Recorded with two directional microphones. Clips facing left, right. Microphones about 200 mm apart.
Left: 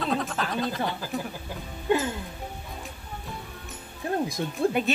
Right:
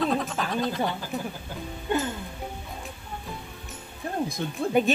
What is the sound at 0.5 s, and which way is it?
Speech, centre (ahead or behind).